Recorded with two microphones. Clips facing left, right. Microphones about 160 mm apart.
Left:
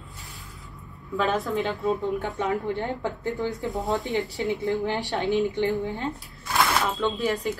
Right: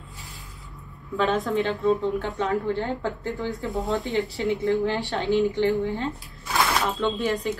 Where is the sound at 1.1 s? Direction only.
Centre (ahead or behind).